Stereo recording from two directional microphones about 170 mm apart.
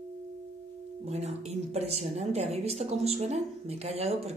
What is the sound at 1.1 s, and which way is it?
A woman's voice, 40° right (ahead or behind).